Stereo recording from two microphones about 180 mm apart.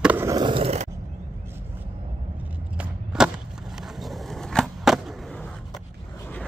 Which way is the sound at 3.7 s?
Centre (ahead or behind).